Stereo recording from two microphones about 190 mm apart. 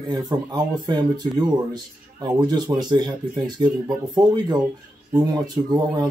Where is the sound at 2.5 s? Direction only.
20° right (ahead or behind).